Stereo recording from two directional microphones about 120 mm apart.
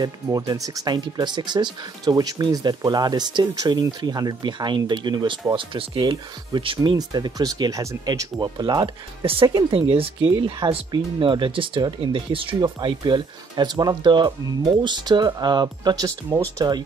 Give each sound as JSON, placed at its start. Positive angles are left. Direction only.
{"t": 0.0, "sound": "speech", "side_deg": -30}
{"t": 9.2, "sound": "speech", "side_deg": -45}